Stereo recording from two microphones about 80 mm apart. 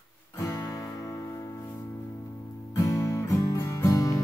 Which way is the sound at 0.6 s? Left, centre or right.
Left.